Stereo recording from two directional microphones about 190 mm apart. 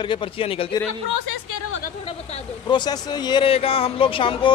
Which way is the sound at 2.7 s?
20° left (ahead or behind).